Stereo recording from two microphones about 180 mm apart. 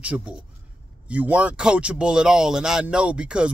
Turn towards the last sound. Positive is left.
turn(degrees=-5)  # may be behind; listen again after turning